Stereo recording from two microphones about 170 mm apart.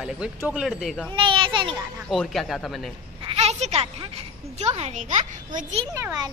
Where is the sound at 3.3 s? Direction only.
40° right (ahead or behind).